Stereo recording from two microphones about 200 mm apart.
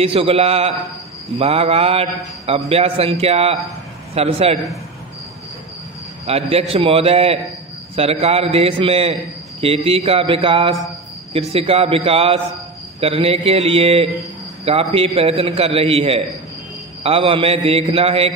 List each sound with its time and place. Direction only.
0.0 s a man's voice: 30° right (ahead or behind)
6.2 s a man's voice: 30° right (ahead or behind)